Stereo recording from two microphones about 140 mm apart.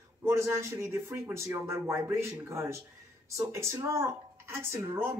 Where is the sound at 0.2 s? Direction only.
20° right (ahead or behind).